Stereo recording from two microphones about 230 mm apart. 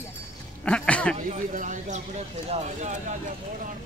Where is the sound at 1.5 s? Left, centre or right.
Right.